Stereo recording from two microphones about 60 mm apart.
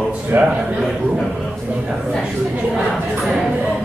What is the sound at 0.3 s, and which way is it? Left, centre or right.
Speech, right.